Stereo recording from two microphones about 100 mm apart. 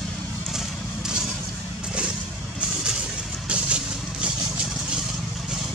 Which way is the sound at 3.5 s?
10° right (ahead or behind).